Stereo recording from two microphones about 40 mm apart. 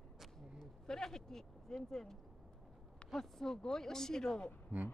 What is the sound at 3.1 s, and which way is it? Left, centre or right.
Speech, centre.